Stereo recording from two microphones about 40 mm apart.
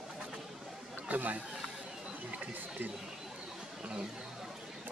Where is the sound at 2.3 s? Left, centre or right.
Right.